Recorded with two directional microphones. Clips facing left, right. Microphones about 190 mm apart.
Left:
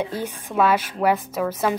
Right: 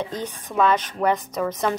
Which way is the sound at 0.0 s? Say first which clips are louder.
Left 2 dB; 10° left (ahead or behind).